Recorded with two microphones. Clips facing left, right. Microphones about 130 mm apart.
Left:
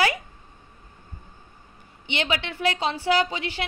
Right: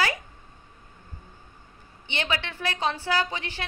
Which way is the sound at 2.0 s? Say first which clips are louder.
Left 3 dB; 15° left (ahead or behind).